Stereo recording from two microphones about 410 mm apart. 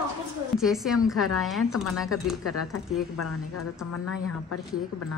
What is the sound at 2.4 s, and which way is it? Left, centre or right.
Speech, left.